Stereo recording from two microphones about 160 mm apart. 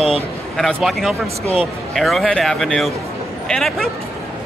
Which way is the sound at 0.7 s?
Centre (ahead or behind).